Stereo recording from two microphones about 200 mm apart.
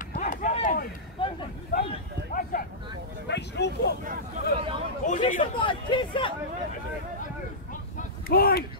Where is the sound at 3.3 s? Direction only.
60° left (ahead or behind).